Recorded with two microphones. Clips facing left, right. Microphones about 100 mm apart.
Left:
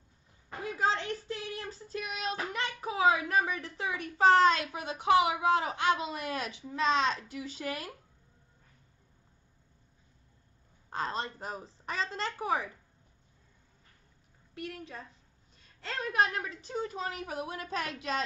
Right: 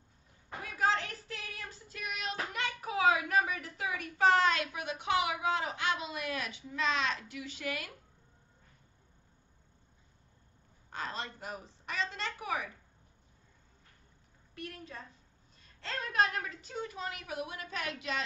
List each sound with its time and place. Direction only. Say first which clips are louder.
0.6 s child singing: left 1 dB; 25° left (ahead or behind)
10.9 s a woman's voice: left 5 dB; 35° left (ahead or behind)
16.1 s a woman's voice: left 2 dB; 20° left (ahead or behind); by 18.2 s 35° left (ahead or behind)